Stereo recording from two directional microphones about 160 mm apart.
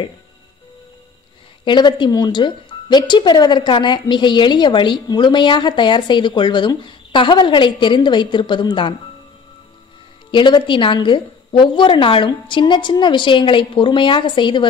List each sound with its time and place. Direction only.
1.6 s speech: 30° left (ahead or behind)
10.3 s a woman's voice: 30° left (ahead or behind)